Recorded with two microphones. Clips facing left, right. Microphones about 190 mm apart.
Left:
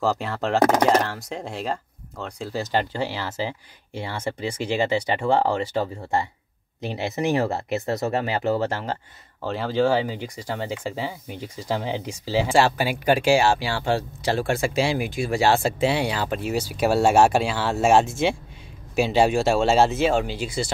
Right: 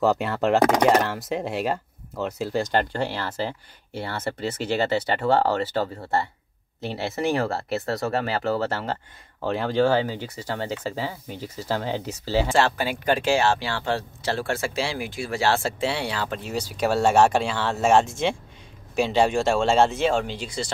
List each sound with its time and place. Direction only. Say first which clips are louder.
0.0 s speech: right 3 dB; centre (ahead or behind)
6.8 s speech: left 1 dB; centre (ahead or behind)
7.1 s speech: left 2 dB; 20° left (ahead or behind)